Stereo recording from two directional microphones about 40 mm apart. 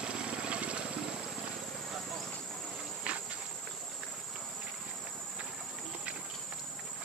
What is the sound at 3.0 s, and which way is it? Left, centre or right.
Insect, right.